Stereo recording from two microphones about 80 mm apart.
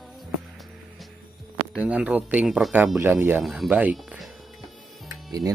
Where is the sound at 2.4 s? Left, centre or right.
Centre.